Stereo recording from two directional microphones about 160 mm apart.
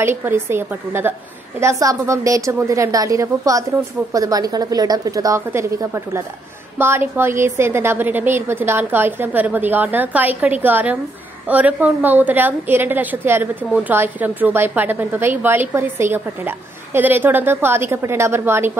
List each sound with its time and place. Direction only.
0.0 s a woman's voice: 15° right (ahead or behind)